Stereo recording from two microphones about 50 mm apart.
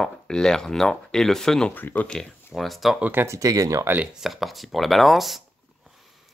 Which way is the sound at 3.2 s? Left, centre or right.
Right.